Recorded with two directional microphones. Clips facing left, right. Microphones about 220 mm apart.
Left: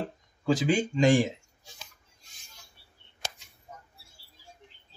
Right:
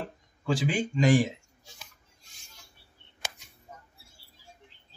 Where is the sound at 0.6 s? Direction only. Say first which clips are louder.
Left 2 dB; 25° left (ahead or behind).